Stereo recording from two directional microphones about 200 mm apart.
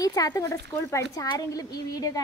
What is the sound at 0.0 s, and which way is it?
A woman's voice, 15° left (ahead or behind).